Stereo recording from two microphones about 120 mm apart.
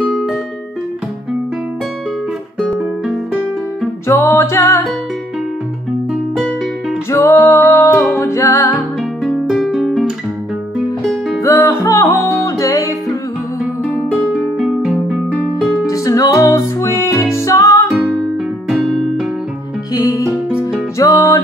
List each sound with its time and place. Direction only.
0.1 s music: centre (ahead or behind)
4.1 s music: 20° left (ahead or behind)
7.1 s music: 20° left (ahead or behind)
9.2 s guitar: centre (ahead or behind)
11.4 s music: 25° left (ahead or behind)
14.3 s music: 5° right (ahead or behind)
15.9 s music: 30° left (ahead or behind)
17.9 s music: 10° right (ahead or behind)
19.9 s music: 30° left (ahead or behind)
20.4 s music: 10° right (ahead or behind)
21.0 s music: 25° left (ahead or behind)